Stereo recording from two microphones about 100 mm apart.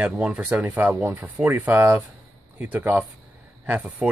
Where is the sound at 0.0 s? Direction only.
10° right (ahead or behind).